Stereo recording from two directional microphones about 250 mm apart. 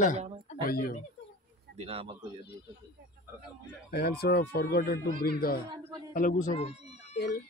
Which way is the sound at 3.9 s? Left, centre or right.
Left.